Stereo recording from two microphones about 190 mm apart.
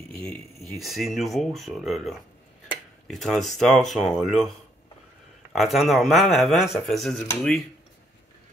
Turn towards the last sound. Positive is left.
turn(degrees=5)  # may be behind; listen again after turning